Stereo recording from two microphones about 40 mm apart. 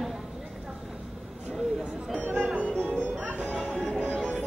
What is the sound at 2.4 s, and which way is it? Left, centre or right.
Music, right.